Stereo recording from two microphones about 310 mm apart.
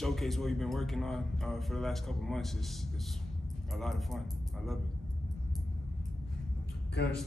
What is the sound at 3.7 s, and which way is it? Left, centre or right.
Speech, centre.